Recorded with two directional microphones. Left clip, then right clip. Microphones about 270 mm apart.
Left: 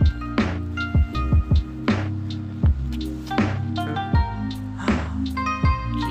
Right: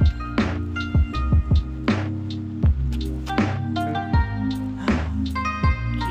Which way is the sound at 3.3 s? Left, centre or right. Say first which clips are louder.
Even; right.